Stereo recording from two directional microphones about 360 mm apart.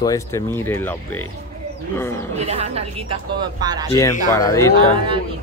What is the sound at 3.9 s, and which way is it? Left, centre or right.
Speech, centre.